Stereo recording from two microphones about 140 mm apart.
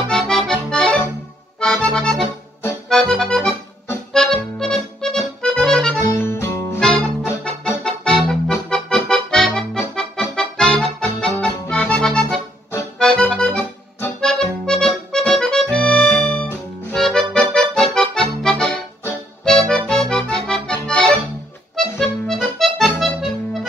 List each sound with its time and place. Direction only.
0.0 s accordion: 5° left (ahead or behind)
6.1 s music: 20° left (ahead or behind)
6.8 s accordion: 5° left (ahead or behind)